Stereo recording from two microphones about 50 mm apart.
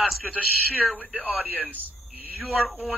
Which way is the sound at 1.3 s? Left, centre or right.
Right.